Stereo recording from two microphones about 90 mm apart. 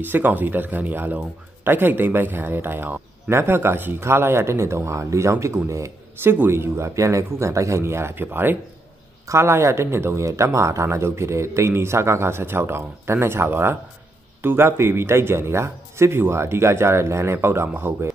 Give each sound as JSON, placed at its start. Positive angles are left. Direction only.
{"t": 0.0, "sound": "a man's voice", "side_deg": -20}